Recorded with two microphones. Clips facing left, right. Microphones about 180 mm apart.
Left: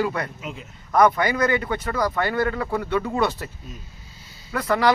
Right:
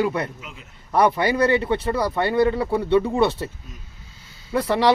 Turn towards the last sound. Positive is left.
turn(degrees=-30)  # may be behind; listen again after turning